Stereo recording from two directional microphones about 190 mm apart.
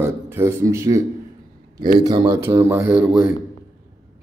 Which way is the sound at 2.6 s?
10° right (ahead or behind).